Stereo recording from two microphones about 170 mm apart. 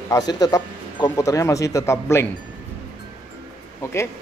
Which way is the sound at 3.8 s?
15° left (ahead or behind).